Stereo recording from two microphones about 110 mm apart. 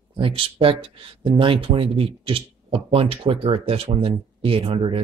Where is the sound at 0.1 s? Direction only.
55° right (ahead or behind).